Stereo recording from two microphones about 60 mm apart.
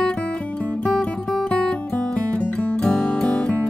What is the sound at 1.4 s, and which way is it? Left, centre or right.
Music, left.